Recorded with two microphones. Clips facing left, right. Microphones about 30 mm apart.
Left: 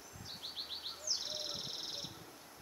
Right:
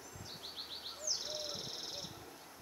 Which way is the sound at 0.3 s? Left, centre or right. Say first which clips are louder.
Left 3 dB; centre.